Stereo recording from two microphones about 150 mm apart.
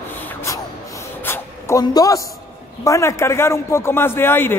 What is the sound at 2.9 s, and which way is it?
Speech, 20° left (ahead or behind).